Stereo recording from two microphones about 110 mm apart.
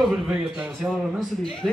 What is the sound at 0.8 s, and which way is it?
Speech, centre (ahead or behind).